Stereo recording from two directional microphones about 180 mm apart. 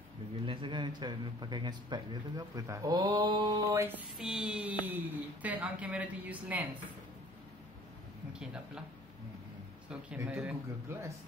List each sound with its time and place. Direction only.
0.5 s speech: 25° right (ahead or behind)
3.8 s a sound: 5° right (ahead or behind)
4.8 s a woman's voice: 10° right (ahead or behind)
8.3 s speech: 5° right (ahead or behind)
9.8 s a woman's voice: 5° right (ahead or behind)